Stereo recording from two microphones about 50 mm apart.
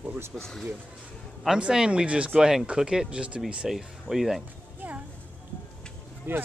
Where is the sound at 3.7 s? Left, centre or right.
Centre.